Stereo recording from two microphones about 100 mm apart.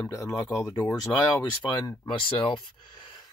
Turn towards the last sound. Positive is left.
turn(degrees=50)  # may be behind; listen again after turning